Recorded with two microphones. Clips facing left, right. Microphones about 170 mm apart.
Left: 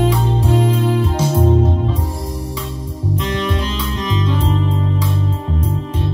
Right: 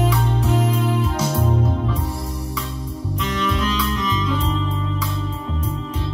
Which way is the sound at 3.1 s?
30° left (ahead or behind).